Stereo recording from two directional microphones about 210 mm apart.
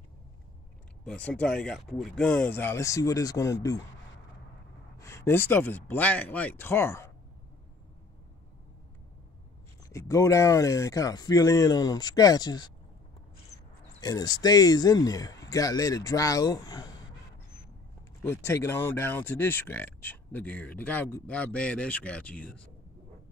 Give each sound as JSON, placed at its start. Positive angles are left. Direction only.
{"t": 1.0, "sound": "speech", "side_deg": 5}
{"t": 4.9, "sound": "speech", "side_deg": 15}
{"t": 9.8, "sound": "speech", "side_deg": 15}
{"t": 14.0, "sound": "speech", "side_deg": 20}
{"t": 18.2, "sound": "speech", "side_deg": 10}